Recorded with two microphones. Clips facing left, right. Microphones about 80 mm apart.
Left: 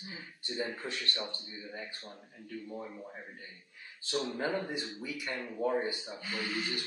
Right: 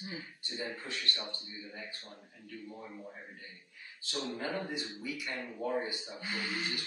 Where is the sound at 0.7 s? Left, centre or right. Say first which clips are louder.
Left 2 dB; left.